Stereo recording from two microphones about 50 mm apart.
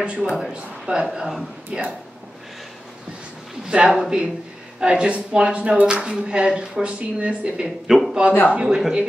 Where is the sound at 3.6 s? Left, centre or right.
Centre.